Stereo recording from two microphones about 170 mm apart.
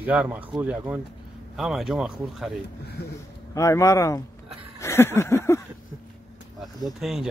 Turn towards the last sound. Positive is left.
turn(degrees=0)  # may be behind; listen again after turning